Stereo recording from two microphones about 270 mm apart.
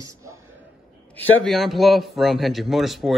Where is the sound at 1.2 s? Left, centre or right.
Centre.